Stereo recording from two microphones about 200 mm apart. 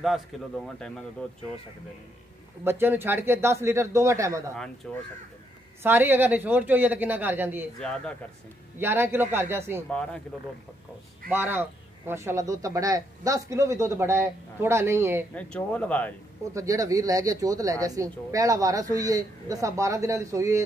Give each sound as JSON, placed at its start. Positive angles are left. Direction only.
{"t": 0.3, "sound": "speech", "side_deg": 0}
{"t": 2.6, "sound": "speech", "side_deg": -10}
{"t": 4.8, "sound": "speech", "side_deg": 5}
{"t": 5.8, "sound": "speech", "side_deg": -10}
{"t": 7.8, "sound": "speech", "side_deg": 5}
{"t": 8.7, "sound": "speech", "side_deg": -10}
{"t": 9.8, "sound": "speech", "side_deg": 5}
{"t": 11.2, "sound": "speech", "side_deg": -10}
{"t": 15.3, "sound": "speech", "side_deg": 5}
{"t": 16.5, "sound": "speech", "side_deg": -15}